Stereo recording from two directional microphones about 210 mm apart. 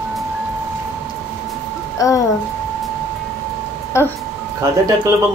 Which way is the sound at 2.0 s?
15° left (ahead or behind).